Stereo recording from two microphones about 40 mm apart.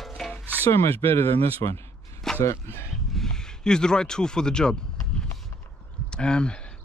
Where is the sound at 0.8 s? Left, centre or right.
Left.